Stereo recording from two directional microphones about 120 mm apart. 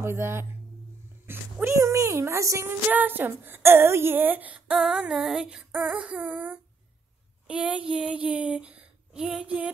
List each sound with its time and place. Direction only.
0.0 s speech: 20° right (ahead or behind)
2.9 s a woman's voice: 15° right (ahead or behind)
7.4 s a sound: 10° right (ahead or behind)